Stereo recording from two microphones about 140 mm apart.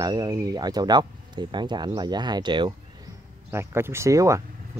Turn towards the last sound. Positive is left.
turn(degrees=-20)  # may be behind; listen again after turning